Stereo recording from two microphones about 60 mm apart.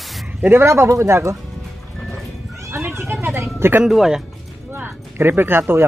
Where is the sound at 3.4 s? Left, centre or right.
Right.